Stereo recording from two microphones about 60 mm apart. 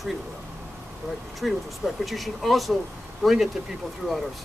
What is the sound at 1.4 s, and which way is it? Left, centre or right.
Speech, centre.